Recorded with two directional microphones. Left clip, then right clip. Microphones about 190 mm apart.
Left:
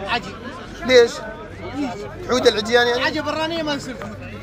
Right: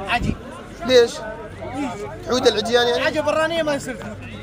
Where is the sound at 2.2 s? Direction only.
5° right (ahead or behind).